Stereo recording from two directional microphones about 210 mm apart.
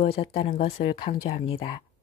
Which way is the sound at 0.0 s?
25° left (ahead or behind).